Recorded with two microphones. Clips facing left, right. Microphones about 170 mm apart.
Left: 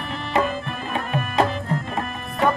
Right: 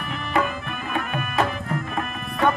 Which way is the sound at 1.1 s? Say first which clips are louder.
Left 4 dB; 30° left (ahead or behind).